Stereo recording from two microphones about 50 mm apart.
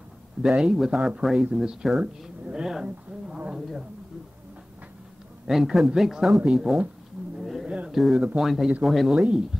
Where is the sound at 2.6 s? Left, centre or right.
Centre.